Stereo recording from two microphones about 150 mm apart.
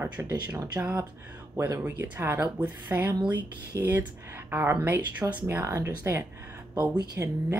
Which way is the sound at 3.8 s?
15° right (ahead or behind).